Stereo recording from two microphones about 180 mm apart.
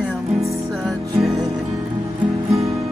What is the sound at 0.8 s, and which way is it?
Music, centre (ahead or behind).